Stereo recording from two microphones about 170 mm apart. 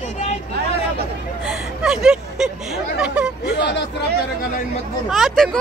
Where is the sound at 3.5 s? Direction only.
90° left.